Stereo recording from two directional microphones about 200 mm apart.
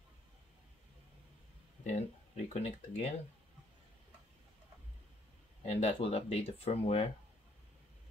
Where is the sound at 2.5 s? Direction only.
30° left (ahead or behind).